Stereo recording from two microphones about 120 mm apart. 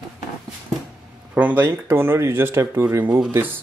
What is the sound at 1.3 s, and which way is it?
Speech, 15° right (ahead or behind).